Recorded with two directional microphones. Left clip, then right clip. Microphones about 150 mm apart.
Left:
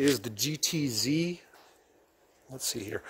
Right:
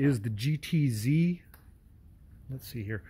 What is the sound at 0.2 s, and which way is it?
Speech, 15° left (ahead or behind).